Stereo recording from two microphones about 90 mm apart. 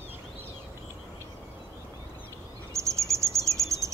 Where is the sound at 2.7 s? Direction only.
35° right (ahead or behind).